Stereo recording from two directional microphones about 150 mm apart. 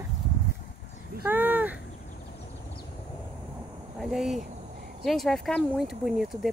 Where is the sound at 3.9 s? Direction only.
Centre (ahead or behind).